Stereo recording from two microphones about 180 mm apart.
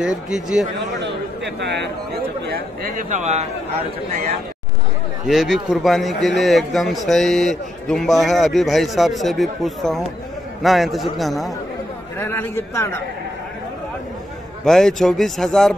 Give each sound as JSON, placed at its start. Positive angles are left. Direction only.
{"t": 0.0, "sound": "a man's voice", "side_deg": -5}
{"t": 1.0, "sound": "a sound", "side_deg": -70}
{"t": 2.5, "sound": "speech", "side_deg": -50}
{"t": 5.2, "sound": "a man's voice", "side_deg": 0}
{"t": 12.2, "sound": "a man's voice", "side_deg": 10}
{"t": 14.6, "sound": "a man's voice", "side_deg": 0}